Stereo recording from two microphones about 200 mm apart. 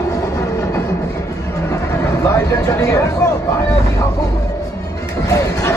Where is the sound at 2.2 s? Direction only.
15° left (ahead or behind).